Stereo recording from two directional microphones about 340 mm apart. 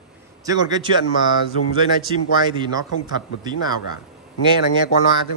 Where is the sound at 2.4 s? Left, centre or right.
Centre.